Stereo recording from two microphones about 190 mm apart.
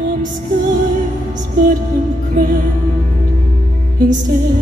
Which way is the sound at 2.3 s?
50° right (ahead or behind).